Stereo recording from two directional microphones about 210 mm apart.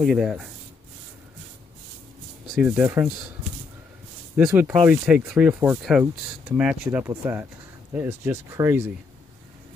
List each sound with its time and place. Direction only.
0.0 s speech: centre (ahead or behind)
2.5 s speech: 5° right (ahead or behind)
4.5 s speech: 10° right (ahead or behind)